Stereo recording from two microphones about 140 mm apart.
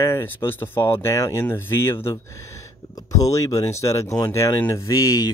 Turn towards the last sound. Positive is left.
turn(degrees=25)  # may be behind; listen again after turning